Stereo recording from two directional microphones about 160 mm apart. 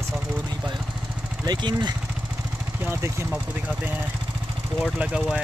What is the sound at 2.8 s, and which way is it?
Speech, 15° right (ahead or behind).